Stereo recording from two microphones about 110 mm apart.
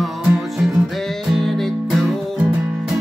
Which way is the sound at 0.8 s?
Centre (ahead or behind).